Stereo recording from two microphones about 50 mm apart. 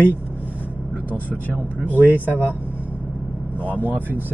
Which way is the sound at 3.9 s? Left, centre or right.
Right.